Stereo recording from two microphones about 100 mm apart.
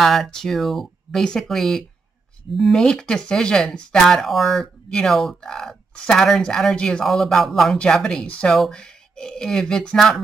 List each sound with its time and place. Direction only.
0.0 s speech: centre (ahead or behind)